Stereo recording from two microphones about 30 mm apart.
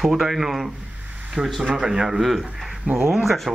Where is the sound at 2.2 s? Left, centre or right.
Centre.